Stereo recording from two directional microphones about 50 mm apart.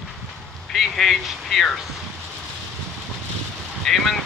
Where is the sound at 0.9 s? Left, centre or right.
Centre.